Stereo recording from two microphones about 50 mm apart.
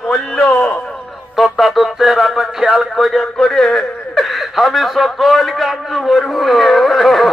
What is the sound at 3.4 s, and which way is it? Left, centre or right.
A man's voice, centre.